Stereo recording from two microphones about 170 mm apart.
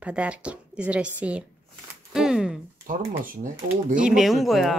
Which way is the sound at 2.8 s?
55° right (ahead or behind).